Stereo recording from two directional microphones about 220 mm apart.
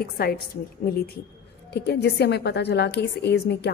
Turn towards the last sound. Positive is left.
turn(degrees=50)  # may be behind; listen again after turning